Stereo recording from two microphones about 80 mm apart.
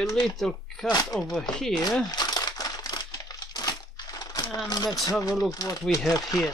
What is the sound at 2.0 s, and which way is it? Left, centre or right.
Crumpling, left.